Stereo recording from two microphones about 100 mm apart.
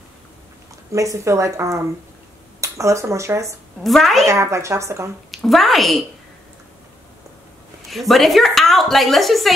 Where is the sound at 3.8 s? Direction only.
Centre (ahead or behind).